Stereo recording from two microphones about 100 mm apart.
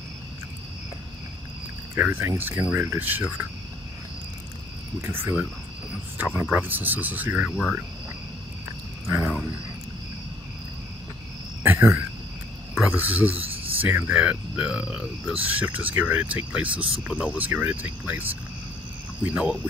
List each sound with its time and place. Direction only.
2.0 s speech: 20° right (ahead or behind)
5.0 s speech: 25° right (ahead or behind)
9.0 s wild animals: 25° right (ahead or behind)
11.6 s a sound: 25° right (ahead or behind)
12.9 s speech: 15° right (ahead or behind)
13.4 s a sound: 70° right (ahead or behind)
13.7 s speech: 20° right (ahead or behind)